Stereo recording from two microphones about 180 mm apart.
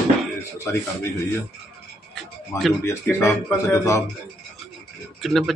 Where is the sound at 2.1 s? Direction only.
Centre (ahead or behind).